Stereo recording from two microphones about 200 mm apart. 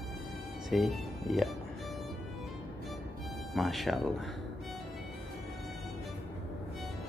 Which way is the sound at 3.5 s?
Centre (ahead or behind).